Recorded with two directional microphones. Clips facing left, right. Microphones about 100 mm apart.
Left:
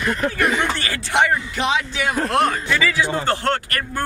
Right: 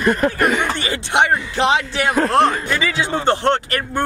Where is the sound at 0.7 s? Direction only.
20° right (ahead or behind).